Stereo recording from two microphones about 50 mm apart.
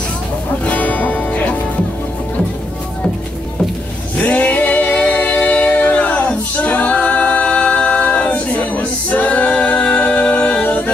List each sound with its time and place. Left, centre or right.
0.7 s music: left
4.2 s a capella: left